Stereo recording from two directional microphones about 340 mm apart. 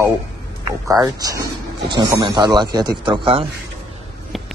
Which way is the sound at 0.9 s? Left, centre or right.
Centre.